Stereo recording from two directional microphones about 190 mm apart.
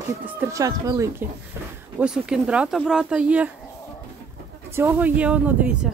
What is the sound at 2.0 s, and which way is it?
Speech, 5° right (ahead or behind).